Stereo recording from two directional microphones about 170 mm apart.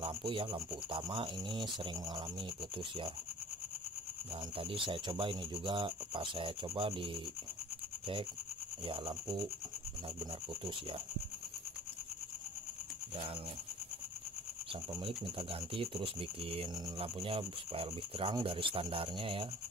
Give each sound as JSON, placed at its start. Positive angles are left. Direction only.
{"t": 0.0, "sound": "speech", "side_deg": -30}
{"t": 4.6, "sound": "speech", "side_deg": -30}
{"t": 8.8, "sound": "speech", "side_deg": -30}
{"t": 15.0, "sound": "speech", "side_deg": -35}